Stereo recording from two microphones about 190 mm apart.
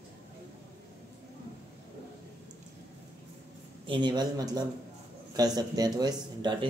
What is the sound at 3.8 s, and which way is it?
Speech, 25° right (ahead or behind).